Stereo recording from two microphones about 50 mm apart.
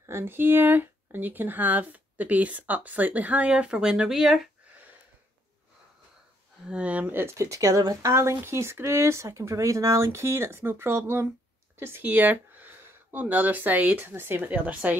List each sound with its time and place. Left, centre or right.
0.2 s speech: right; by 4.1 s centre
4.1 s speech: centre
6.7 s speech: right
7.1 s speech: right
7.3 s speech: right
12.0 s speech: right
14.1 s speech: right
14.4 s speech: right